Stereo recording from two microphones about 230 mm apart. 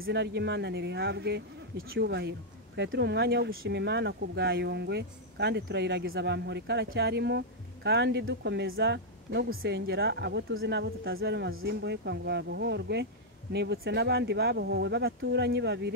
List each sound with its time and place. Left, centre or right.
0.0 s speech: right